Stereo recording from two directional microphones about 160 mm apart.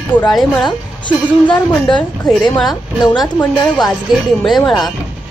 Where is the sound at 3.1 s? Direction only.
5° left (ahead or behind).